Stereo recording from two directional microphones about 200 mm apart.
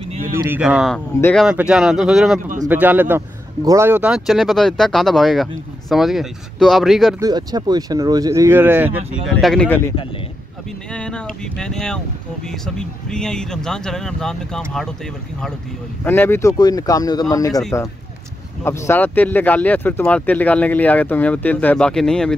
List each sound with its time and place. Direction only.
0.5 s speech: 5° right (ahead or behind)
7.2 s speech: 20° right (ahead or behind)
9.4 s speech: 5° left (ahead or behind)
10.9 s speech: 5° left (ahead or behind)
16.0 s speech: 10° left (ahead or behind)